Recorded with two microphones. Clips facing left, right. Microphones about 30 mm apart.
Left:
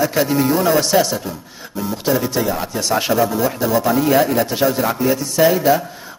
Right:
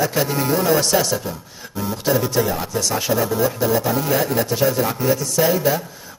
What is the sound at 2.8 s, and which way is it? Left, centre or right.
Speech, left.